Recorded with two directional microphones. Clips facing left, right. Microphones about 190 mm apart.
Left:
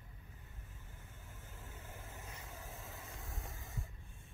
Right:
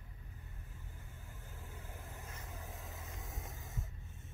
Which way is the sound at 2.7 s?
Centre (ahead or behind).